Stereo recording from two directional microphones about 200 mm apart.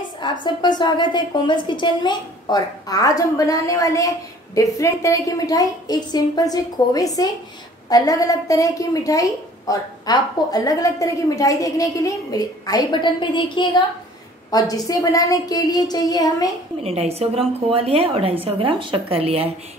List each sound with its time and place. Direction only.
0.2 s a woman's voice: 20° left (ahead or behind)
16.8 s a woman's voice: 30° right (ahead or behind)